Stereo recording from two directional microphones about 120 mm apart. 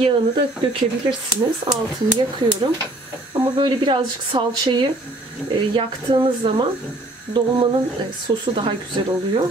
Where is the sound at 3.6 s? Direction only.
40° right (ahead or behind).